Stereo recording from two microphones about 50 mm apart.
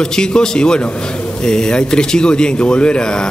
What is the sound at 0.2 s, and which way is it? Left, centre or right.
A man's voice, centre.